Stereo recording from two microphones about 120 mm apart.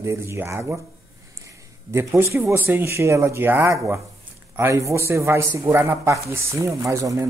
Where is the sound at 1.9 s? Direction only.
20° right (ahead or behind).